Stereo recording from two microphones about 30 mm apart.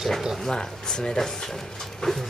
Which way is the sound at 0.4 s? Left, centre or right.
Left.